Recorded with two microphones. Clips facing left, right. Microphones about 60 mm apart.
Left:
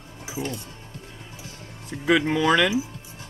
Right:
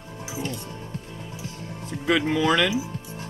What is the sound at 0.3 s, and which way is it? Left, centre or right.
Speech, left.